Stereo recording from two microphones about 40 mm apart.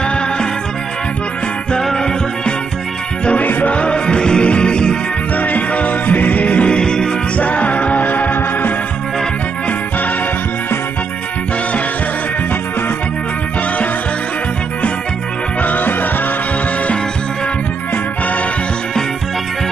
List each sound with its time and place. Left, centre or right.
0.0 s music: left
1.8 s music: centre
3.3 s music: left
3.7 s music: left
5.3 s music: left
6.8 s music: centre
7.3 s music: left
15.6 s music: left